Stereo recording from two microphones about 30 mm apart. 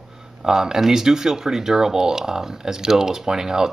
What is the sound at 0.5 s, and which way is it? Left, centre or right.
Speech, centre.